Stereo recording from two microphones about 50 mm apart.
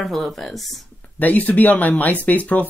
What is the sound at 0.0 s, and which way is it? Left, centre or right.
Speech, centre.